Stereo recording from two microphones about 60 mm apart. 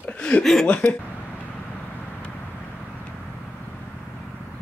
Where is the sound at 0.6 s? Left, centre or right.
Left.